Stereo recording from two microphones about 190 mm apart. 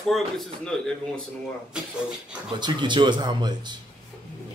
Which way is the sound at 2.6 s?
25° right (ahead or behind).